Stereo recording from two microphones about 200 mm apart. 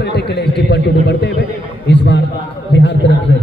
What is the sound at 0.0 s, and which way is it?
A man's voice, 55° left (ahead or behind).